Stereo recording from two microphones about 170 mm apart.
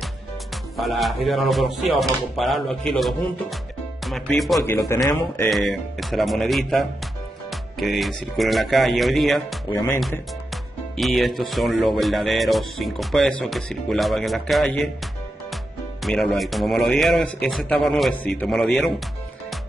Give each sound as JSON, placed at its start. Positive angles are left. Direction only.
{"t": 0.7, "sound": "speech", "side_deg": 0}
{"t": 4.6, "sound": "speech", "side_deg": 20}
{"t": 5.5, "sound": "speech", "side_deg": 0}
{"t": 7.5, "sound": "music", "side_deg": 0}
{"t": 8.4, "sound": "speech", "side_deg": 0}